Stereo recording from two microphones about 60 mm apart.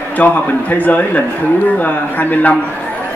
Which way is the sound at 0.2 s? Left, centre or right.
Left.